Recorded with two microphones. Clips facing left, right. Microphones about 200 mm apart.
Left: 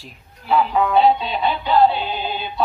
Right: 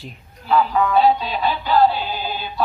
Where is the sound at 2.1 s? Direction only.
25° left (ahead or behind).